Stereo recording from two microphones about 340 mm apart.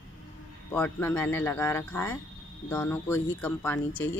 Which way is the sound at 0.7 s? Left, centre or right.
Centre.